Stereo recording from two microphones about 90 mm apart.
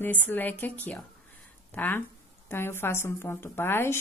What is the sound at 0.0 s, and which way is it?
A woman's voice, 20° left (ahead or behind).